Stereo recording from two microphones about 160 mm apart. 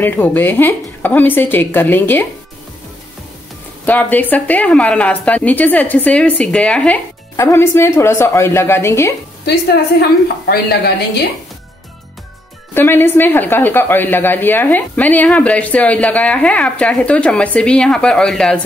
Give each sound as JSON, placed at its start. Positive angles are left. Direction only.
{"t": 0.0, "sound": "speech", "side_deg": 10}
{"t": 3.8, "sound": "speech", "side_deg": 10}
{"t": 9.4, "sound": "a woman's voice", "side_deg": 90}
{"t": 12.7, "sound": "speech", "side_deg": 15}